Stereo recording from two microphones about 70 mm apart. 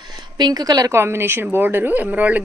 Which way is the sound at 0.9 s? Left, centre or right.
Right.